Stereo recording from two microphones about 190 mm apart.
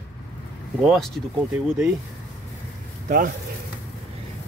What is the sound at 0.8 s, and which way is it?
Speech, centre (ahead or behind).